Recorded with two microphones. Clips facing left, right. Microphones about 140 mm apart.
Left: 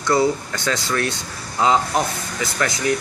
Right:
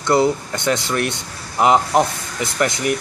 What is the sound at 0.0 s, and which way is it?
Speech, 25° right (ahead or behind).